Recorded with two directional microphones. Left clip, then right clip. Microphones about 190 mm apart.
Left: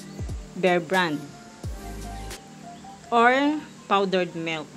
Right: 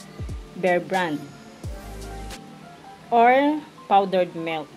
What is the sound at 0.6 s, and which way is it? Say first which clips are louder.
Speech: even; 30° left (ahead or behind).